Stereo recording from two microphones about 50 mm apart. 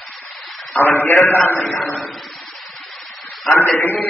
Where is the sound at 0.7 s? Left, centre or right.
Left.